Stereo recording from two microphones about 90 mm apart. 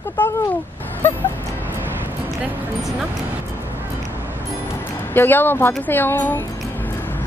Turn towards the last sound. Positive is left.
turn(degrees=20)  # may be behind; listen again after turning